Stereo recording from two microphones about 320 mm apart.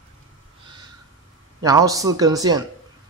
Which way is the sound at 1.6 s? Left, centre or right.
Centre.